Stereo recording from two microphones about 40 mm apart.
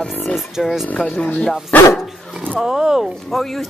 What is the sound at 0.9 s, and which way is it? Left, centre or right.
Speech, left.